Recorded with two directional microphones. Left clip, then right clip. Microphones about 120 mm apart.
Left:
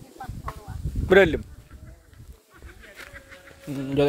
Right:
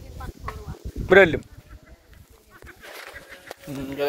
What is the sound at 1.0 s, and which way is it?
Speech, 45° left (ahead or behind).